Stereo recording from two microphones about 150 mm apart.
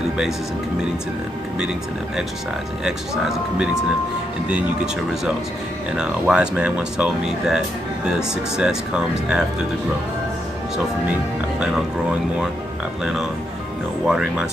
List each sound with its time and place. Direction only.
1.6 s speech: 5° right (ahead or behind)
14.0 s speech: 5° right (ahead or behind)